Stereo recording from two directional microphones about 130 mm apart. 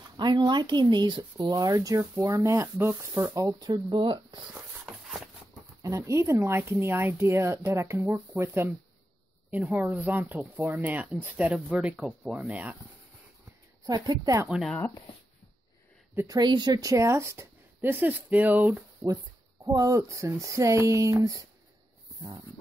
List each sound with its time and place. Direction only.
0.2 s speech: 35° right (ahead or behind)
4.8 s a sound: centre (ahead or behind)
5.8 s speech: 25° right (ahead or behind)
13.8 s speech: 30° right (ahead or behind)
14.5 s speech: centre (ahead or behind)
16.3 s speech: 30° right (ahead or behind); by 18.9 s 15° right (ahead or behind)
19.6 s speech: 25° right (ahead or behind)